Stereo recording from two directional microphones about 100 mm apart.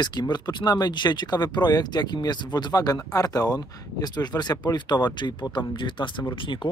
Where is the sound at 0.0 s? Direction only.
45° left (ahead or behind).